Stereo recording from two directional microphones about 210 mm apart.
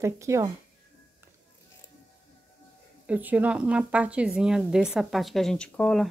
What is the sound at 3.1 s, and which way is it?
A woman's voice, 5° right (ahead or behind).